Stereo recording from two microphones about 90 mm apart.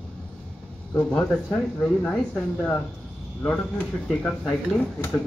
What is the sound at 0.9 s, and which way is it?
Speech, 15° left (ahead or behind).